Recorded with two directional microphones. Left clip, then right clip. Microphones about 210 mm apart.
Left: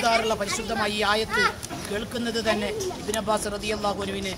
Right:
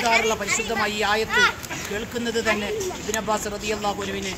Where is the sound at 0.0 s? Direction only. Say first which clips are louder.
Right 2 dB; 20° left (ahead or behind).